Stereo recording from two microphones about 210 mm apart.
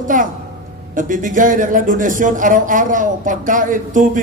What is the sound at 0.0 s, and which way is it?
A woman's voice, 40° right (ahead or behind).